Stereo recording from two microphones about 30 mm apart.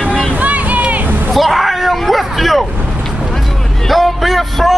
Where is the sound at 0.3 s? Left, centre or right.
Right.